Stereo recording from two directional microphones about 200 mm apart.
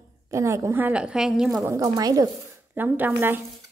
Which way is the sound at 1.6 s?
15° right (ahead or behind).